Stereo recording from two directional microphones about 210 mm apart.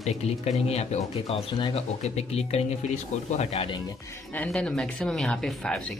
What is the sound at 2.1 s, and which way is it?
Speech, 30° left (ahead or behind).